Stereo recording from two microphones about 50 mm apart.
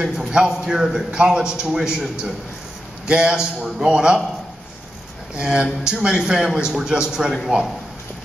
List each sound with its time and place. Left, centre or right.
0.2 s a man's voice: centre
5.3 s a man's voice: centre